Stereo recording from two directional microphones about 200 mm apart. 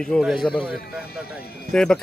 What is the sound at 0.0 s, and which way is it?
A man's voice, centre (ahead or behind).